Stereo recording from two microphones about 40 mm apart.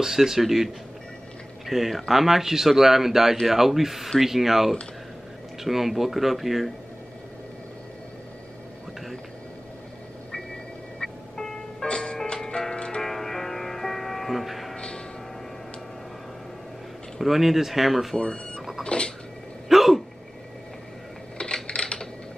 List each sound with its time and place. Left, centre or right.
0.0 s speech: centre
1.7 s speech: centre
11.0 s music: centre
13.0 s music: centre
17.2 s speech: centre
18.1 s speech: centre
18.9 s a sound: left
19.7 s a sound: centre
21.6 s typing: left